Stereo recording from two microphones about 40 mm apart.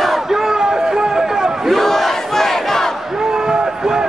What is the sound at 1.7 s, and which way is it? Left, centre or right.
Battle cry, centre.